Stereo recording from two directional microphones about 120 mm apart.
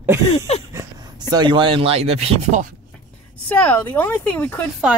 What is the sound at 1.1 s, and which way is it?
Speech, 35° right (ahead or behind).